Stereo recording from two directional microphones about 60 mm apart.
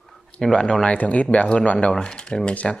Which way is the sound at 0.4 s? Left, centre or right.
Centre.